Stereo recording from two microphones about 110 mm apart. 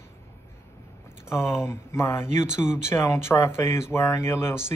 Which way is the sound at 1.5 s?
25° left (ahead or behind).